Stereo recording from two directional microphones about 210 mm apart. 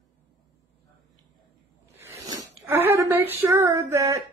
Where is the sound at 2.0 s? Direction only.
15° right (ahead or behind).